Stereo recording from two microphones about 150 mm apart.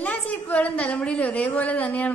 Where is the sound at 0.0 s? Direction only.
10° left (ahead or behind).